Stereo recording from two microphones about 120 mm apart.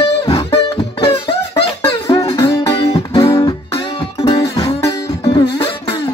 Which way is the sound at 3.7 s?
50° left (ahead or behind).